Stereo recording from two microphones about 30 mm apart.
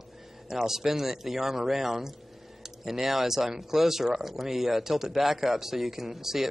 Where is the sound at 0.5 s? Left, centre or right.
Centre.